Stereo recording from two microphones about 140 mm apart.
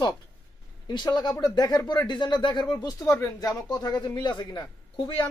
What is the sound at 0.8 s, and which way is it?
Speech, 30° left (ahead or behind).